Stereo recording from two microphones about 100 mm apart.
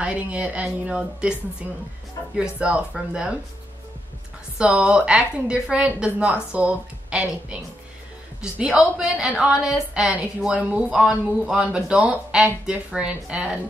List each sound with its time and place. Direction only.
0.0 s a woman's voice: 10° right (ahead or behind)
2.3 s a woman's voice: 10° right (ahead or behind)
4.6 s a woman's voice: 10° right (ahead or behind)